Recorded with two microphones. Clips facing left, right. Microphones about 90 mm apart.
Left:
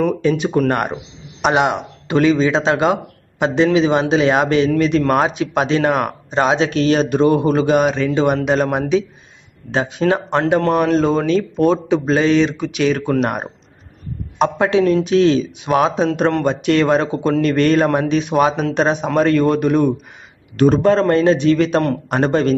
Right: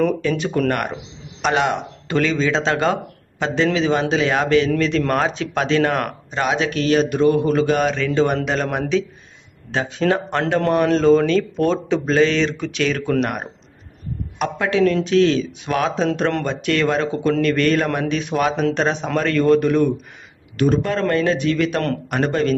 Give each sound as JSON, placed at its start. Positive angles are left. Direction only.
{"t": 0.2, "sound": "speech", "side_deg": 20}
{"t": 20.5, "sound": "speech", "side_deg": 35}